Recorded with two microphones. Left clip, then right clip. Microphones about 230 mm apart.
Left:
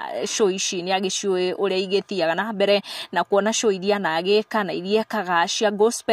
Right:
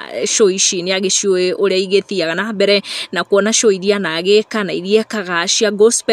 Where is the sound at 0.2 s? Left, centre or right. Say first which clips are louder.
Right 9 dB; centre.